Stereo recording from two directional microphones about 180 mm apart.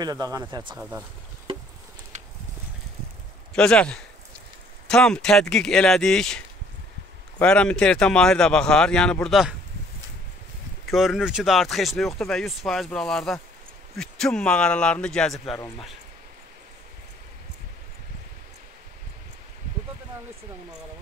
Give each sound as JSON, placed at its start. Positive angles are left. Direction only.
{"t": 0.0, "sound": "speech", "side_deg": -20}
{"t": 3.5, "sound": "speech", "side_deg": 5}
{"t": 10.9, "sound": "speech", "side_deg": 0}